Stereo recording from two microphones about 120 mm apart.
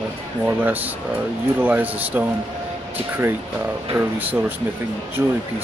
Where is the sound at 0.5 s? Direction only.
15° right (ahead or behind).